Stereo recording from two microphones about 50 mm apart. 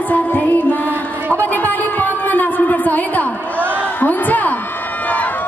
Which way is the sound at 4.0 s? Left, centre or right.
Left.